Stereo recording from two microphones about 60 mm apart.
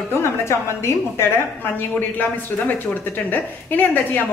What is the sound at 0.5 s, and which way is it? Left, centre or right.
Speech, left.